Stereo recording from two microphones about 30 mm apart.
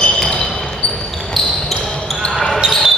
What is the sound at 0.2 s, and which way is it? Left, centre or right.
Basketball bounce, left.